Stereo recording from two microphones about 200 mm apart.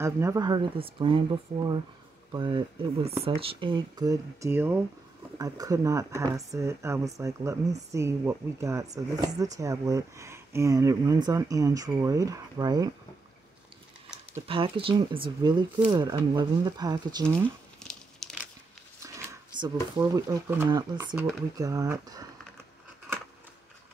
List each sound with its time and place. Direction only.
0.0 s speech: 15° right (ahead or behind)
14.5 s speech: 25° right (ahead or behind)
17.7 s crumpling: 5° left (ahead or behind)
19.0 s speech: 15° right (ahead or behind)